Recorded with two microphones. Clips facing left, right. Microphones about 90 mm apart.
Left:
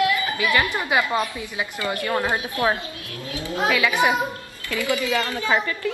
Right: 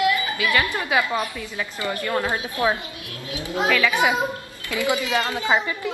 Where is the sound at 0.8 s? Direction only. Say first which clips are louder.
Left 1 dB; centre (ahead or behind).